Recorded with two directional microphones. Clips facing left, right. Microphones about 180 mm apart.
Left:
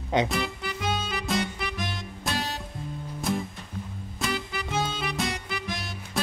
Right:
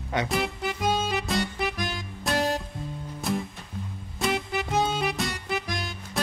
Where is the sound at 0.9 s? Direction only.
Centre (ahead or behind).